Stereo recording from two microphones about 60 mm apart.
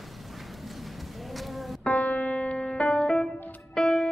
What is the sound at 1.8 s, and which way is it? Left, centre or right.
Piano, centre.